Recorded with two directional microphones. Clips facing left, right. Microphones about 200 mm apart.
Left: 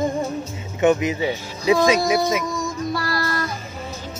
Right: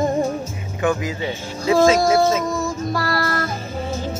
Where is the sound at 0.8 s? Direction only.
20° left (ahead or behind).